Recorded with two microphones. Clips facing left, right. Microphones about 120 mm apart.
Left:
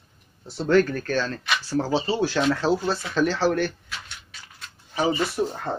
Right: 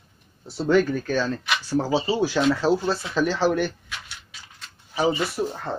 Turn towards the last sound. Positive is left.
turn(degrees=0)  # may be behind; listen again after turning